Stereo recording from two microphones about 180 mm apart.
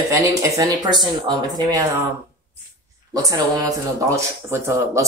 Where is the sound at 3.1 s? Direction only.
20° right (ahead or behind).